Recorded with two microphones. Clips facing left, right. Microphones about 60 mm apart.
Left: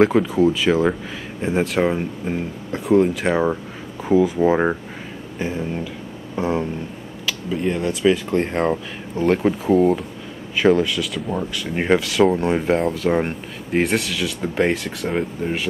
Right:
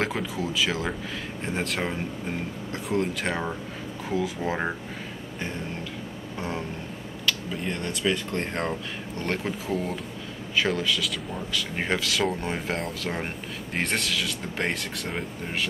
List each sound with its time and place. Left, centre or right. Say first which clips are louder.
0.0 s speech: left 13 dB; centre
4.4 s speech: left 11 dB; centre
5.4 s speech: left 9 dB; centre
6.3 s a sound: left 11 dB; centre
7.2 s speech: left 6 dB; centre